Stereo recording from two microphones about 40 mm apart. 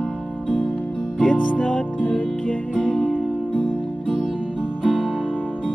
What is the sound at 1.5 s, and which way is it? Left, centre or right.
Music, left.